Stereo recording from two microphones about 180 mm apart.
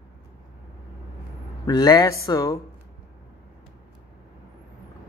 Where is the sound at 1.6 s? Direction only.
20° left (ahead or behind).